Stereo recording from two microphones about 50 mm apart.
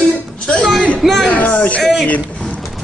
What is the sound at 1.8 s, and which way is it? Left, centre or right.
Speech, centre.